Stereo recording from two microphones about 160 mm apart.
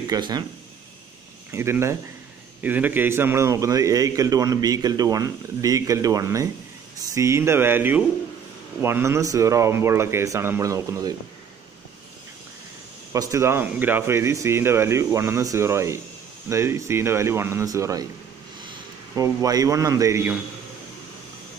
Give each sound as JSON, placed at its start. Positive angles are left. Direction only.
{"t": 0.1, "sound": "a man's voice", "side_deg": -25}
{"t": 1.5, "sound": "a man's voice", "side_deg": -15}
{"t": 13.1, "sound": "speech", "side_deg": -20}
{"t": 19.1, "sound": "a man's voice", "side_deg": -20}